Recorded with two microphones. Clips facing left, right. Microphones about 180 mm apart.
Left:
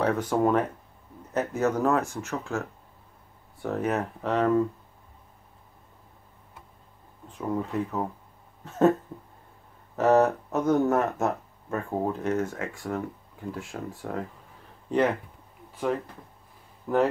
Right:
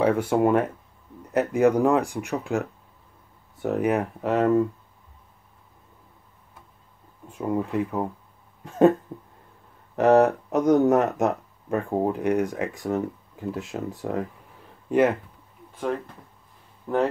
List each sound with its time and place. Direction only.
0.0 s speech: 10° right (ahead or behind)
7.2 s speech: 10° right (ahead or behind)
9.9 s speech: 15° right (ahead or behind)
14.9 s speech: 10° right (ahead or behind)
16.8 s speech: centre (ahead or behind)